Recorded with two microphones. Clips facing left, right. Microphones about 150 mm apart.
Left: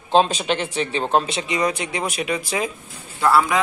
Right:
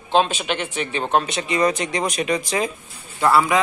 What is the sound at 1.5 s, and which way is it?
Speech, 10° left (ahead or behind).